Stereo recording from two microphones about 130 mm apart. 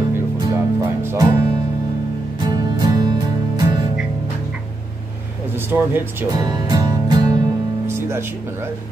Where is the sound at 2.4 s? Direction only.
30° right (ahead or behind).